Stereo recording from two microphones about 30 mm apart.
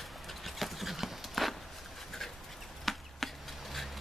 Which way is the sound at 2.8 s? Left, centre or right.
Centre.